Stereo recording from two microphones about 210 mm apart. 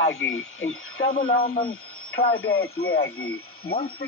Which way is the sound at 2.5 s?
45° left (ahead or behind).